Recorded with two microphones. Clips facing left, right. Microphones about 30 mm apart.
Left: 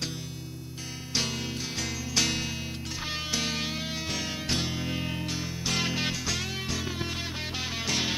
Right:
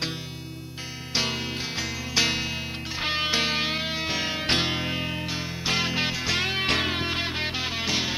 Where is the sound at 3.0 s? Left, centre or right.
Right.